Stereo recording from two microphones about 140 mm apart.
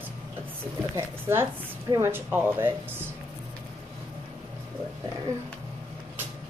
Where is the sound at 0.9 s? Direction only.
15° right (ahead or behind).